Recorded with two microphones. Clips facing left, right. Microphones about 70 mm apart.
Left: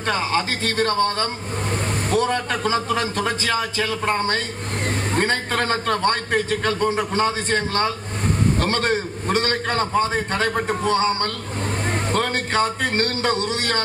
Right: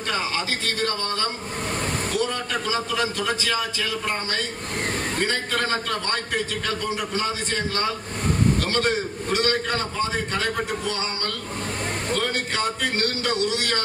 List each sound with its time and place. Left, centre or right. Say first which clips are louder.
0.0 s a man's voice: left 5 dB; left
2.0 s a man's voice: left 8 dB; left
12.1 s a man's voice: left 3 dB; left